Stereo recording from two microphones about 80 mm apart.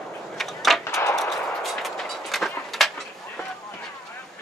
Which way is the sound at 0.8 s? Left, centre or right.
Left.